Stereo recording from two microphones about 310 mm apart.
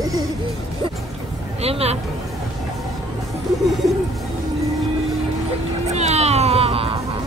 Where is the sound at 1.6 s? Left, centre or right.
Centre.